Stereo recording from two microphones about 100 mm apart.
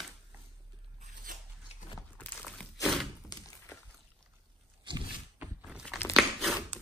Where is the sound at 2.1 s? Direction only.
15° left (ahead or behind).